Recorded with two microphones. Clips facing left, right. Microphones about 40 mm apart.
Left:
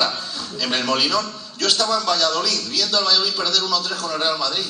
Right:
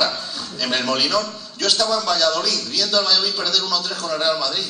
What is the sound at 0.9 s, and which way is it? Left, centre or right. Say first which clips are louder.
A man's voice: left 1 dB; left.